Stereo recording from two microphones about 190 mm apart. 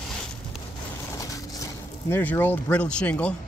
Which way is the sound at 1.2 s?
15° left (ahead or behind).